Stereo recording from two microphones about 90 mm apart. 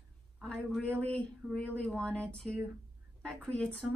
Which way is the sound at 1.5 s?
15° left (ahead or behind).